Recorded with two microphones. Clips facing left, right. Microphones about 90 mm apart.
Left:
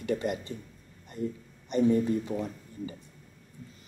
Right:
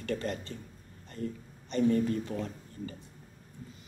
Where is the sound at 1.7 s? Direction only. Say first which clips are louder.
Left 3 dB; 15° left (ahead or behind).